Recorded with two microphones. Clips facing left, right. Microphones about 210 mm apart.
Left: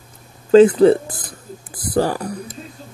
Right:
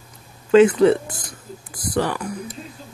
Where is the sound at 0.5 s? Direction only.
35° left (ahead or behind).